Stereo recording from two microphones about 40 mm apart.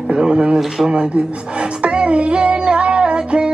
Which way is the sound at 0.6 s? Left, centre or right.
Centre.